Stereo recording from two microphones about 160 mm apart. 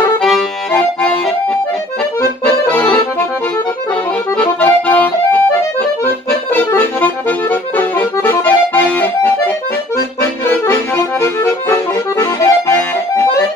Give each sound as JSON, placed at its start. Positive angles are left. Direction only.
{"t": 2.7, "sound": "accordion", "side_deg": 10}
{"t": 4.4, "sound": "accordion", "side_deg": 10}
{"t": 6.5, "sound": "accordion", "side_deg": 10}
{"t": 10.5, "sound": "accordion", "side_deg": 15}